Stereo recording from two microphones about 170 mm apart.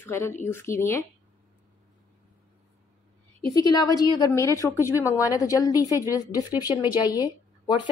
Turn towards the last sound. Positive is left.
turn(degrees=20)  # may be behind; listen again after turning